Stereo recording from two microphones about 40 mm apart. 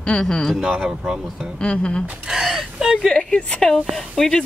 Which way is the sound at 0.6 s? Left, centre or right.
Right.